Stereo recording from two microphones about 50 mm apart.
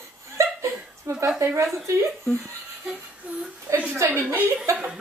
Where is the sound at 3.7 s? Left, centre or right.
Right.